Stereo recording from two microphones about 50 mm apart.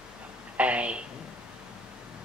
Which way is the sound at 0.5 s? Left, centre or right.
Right.